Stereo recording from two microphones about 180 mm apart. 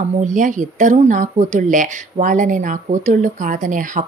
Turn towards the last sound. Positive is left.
turn(degrees=-45)  # may be behind; listen again after turning